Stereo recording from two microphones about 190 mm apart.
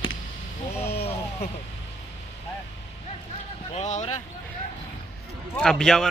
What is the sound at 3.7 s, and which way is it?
Speech, 35° left (ahead or behind).